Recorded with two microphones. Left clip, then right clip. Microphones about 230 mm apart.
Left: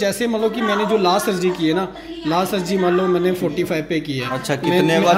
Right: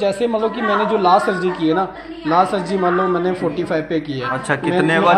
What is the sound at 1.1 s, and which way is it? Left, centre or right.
Speech, left.